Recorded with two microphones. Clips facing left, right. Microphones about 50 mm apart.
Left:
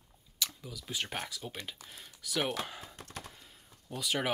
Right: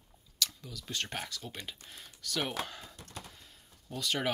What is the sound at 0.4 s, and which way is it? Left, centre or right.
Speech, centre.